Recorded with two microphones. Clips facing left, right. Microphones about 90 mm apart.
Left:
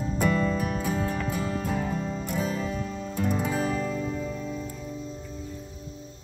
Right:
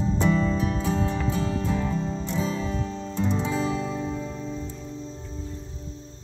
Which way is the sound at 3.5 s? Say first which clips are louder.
Right 1 dB; 55° left (ahead or behind).